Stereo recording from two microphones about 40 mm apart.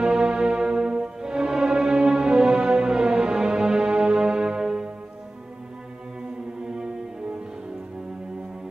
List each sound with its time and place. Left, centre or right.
0.0 s music: centre
6.6 s music: centre